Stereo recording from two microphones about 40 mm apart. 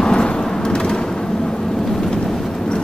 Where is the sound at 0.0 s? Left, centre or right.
Centre.